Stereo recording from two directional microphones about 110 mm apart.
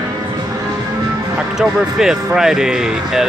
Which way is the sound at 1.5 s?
5° right (ahead or behind).